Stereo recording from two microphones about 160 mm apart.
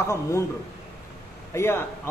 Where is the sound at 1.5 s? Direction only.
15° left (ahead or behind).